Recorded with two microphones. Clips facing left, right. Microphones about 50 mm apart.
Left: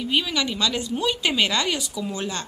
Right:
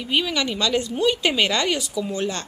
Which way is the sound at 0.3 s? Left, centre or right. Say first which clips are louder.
Right 2 dB; right.